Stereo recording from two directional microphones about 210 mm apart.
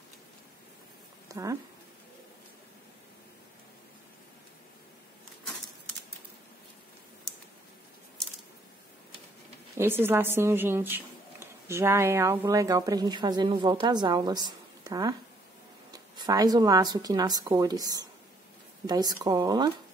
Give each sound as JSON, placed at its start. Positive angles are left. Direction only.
{"t": 1.3, "sound": "speech", "side_deg": -15}
{"t": 9.8, "sound": "a woman's voice", "side_deg": -10}